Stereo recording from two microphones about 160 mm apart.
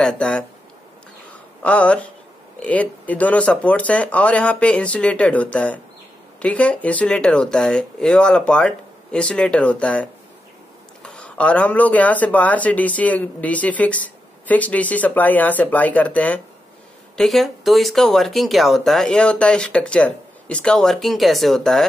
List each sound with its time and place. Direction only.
0.0 s speech: 5° left (ahead or behind)
1.6 s speech: 10° left (ahead or behind)